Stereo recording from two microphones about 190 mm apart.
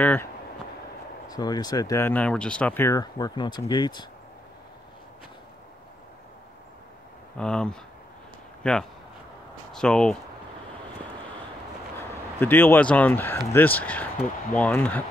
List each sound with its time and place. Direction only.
0.0 s speech: 10° left (ahead or behind)
1.3 s speech: 20° left (ahead or behind)
7.3 s speech: 5° left (ahead or behind)
12.0 s speech: 10° left (ahead or behind)